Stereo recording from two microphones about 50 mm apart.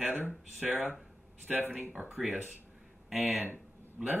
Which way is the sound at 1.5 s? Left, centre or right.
Right.